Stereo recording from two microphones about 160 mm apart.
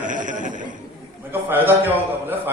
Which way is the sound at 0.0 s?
55° right (ahead or behind).